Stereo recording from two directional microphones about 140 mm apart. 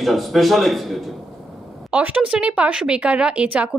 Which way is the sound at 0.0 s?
Centre (ahead or behind).